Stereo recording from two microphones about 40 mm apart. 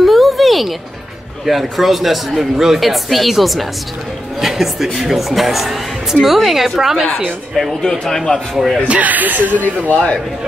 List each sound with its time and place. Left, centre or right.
0.0 s a sound: centre
1.4 s a man's voice: centre
7.8 s a man's voice: centre
8.8 s speech: right
9.8 s speech: left